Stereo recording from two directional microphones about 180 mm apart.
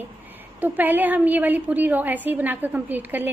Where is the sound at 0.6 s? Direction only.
10° right (ahead or behind).